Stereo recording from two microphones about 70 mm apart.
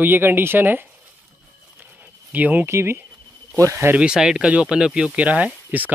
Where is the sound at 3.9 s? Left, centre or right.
Centre.